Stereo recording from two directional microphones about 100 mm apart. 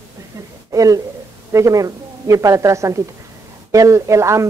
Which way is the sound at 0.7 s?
35° right (ahead or behind).